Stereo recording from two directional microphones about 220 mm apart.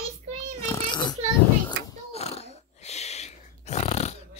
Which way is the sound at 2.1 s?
30° left (ahead or behind).